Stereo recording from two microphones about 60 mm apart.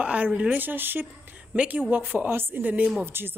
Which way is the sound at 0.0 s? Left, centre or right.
Right.